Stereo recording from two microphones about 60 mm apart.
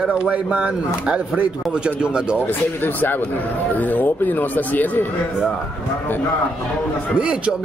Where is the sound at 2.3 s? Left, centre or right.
Left.